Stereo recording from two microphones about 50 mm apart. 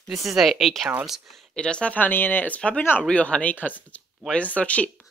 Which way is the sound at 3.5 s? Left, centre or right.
Left.